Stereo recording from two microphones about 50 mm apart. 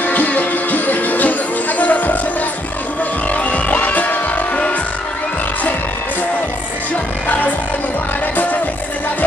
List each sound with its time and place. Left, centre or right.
0.0 s music: left
3.3 s music: left